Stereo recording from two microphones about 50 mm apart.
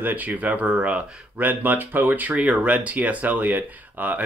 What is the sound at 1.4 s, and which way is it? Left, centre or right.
Speech, right.